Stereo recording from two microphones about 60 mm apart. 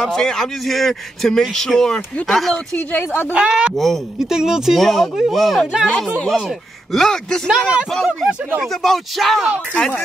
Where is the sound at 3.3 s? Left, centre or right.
Centre.